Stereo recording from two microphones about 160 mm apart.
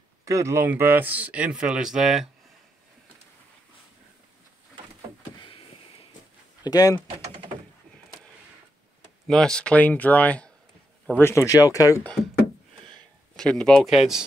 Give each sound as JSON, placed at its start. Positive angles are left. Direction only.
{"t": 0.3, "sound": "speech", "side_deg": -20}
{"t": 5.4, "sound": "a sound", "side_deg": 35}
{"t": 6.6, "sound": "speech", "side_deg": 20}
{"t": 9.3, "sound": "speech", "side_deg": 5}
{"t": 13.4, "sound": "speech", "side_deg": 5}